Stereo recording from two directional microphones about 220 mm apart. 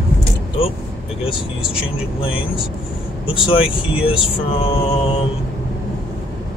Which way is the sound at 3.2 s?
25° left (ahead or behind).